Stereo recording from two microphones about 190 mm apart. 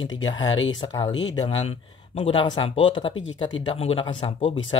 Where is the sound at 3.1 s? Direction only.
85° left.